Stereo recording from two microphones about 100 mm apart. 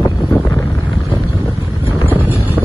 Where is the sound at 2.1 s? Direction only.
20° right (ahead or behind).